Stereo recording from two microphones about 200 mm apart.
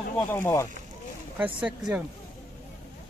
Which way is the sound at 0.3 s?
15° left (ahead or behind).